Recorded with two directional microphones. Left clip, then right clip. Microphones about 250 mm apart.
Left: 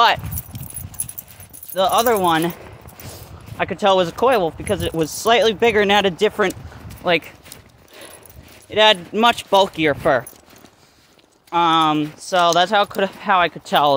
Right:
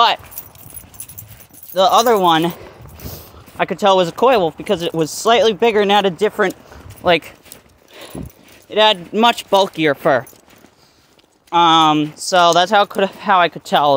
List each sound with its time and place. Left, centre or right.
1.7 s speech: right; by 7.0 s centre
7.0 s speech: right
8.6 s speech: centre
11.5 s speech: right